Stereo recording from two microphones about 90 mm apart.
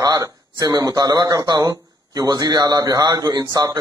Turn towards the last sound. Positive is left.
turn(degrees=-45)  # may be behind; listen again after turning